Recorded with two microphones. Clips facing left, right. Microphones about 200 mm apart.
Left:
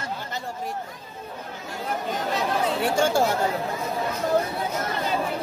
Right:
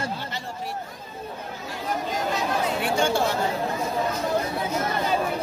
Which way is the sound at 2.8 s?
45° left (ahead or behind).